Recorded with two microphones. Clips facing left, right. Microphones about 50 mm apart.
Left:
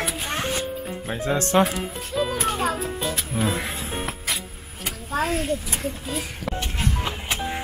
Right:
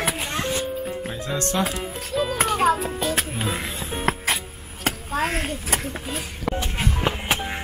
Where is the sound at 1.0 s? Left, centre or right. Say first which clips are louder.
Left 4 dB; left.